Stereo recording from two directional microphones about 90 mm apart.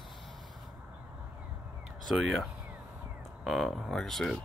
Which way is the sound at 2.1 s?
5° right (ahead or behind).